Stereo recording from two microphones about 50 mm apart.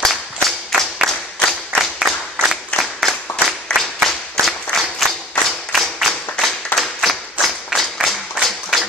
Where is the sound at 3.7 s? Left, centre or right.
Centre.